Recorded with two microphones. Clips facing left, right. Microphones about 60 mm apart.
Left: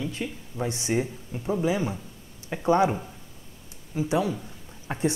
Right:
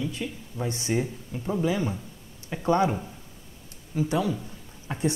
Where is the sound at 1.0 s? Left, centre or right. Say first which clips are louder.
Left 1 dB; centre.